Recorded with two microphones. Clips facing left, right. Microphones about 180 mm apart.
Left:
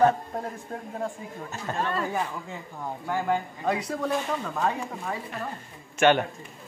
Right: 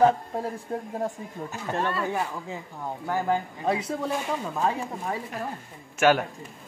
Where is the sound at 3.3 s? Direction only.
25° right (ahead or behind).